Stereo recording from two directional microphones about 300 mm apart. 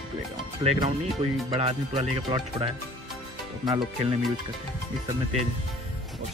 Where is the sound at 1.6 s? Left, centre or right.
Centre.